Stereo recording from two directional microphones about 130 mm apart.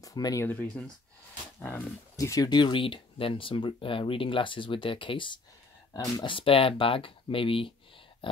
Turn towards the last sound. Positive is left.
turn(degrees=45)  # may be behind; listen again after turning